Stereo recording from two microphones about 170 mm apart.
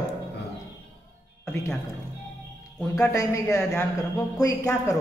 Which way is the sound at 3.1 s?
15° left (ahead or behind).